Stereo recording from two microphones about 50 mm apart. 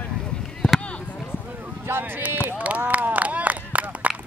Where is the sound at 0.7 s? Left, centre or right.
Left.